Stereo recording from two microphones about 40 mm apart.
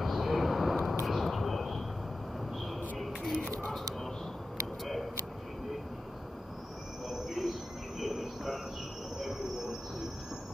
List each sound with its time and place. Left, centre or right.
0.0 s vehicle: centre
3.3 s a sound: centre
7.1 s cricket: centre